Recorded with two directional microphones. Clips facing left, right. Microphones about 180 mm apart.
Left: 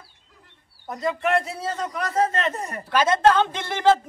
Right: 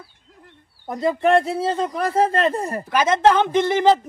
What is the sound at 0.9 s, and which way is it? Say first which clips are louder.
A man's voice: right 6 dB; 30° right (ahead or behind).